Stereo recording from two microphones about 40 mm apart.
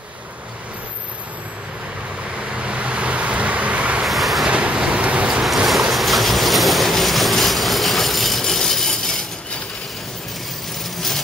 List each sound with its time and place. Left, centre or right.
2.3 s vehicle: right
4.0 s train: centre
4.5 s vehicle: right
5.3 s ocean: centre
5.7 s vehicle: centre
8.9 s a sound: centre